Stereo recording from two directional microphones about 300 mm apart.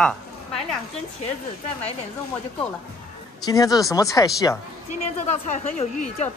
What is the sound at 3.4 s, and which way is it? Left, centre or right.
Speech, centre.